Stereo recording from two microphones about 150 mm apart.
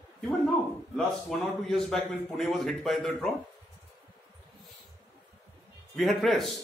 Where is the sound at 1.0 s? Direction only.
Centre (ahead or behind).